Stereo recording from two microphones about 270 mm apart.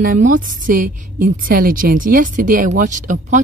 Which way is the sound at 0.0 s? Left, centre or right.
Right.